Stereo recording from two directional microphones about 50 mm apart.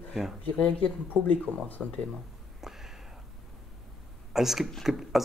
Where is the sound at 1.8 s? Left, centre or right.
Centre.